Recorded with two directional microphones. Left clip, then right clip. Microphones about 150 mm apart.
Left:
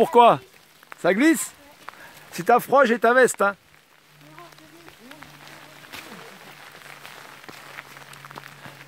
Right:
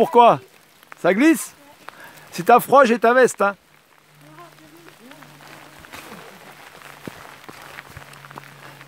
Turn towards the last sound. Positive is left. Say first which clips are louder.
# right 1 dB
turn(degrees=-25)  # may be behind; listen again after turning